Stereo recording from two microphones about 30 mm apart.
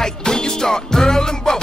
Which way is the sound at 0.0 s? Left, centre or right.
Centre.